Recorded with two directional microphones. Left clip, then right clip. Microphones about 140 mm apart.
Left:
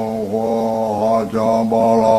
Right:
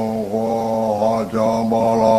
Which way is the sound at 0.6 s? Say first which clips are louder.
Left 1 dB; 30° right (ahead or behind).